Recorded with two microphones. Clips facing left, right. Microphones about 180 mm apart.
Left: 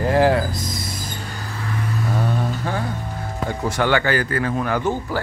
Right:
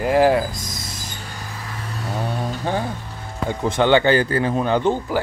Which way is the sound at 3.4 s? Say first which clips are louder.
Right 3 dB; 20° right (ahead or behind).